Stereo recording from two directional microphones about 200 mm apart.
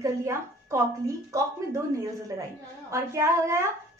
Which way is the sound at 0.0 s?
15° right (ahead or behind).